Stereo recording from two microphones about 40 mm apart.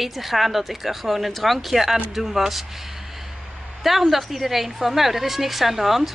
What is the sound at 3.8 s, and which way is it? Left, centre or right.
A woman's voice, centre.